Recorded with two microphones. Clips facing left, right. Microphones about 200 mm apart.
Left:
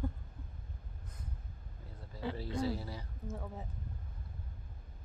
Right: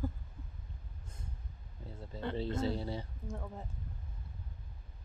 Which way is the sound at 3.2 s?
Centre (ahead or behind).